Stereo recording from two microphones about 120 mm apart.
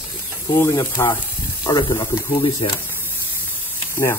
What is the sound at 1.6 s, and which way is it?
Speech, 40° left (ahead or behind).